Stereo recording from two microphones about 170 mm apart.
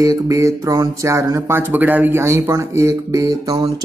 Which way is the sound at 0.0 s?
20° right (ahead or behind).